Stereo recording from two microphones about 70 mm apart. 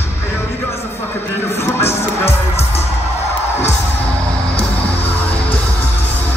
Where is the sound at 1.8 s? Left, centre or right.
Left.